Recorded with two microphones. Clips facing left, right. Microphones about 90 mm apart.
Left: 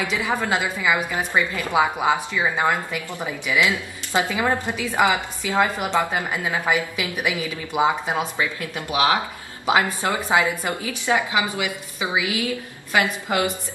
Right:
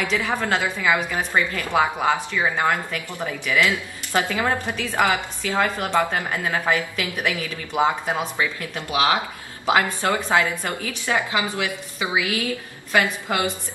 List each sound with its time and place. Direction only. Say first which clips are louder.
0.1 s a woman's voice: even; 15° left (ahead or behind)